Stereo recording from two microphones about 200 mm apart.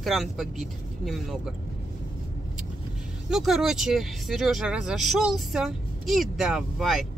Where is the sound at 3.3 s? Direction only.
Centre (ahead or behind).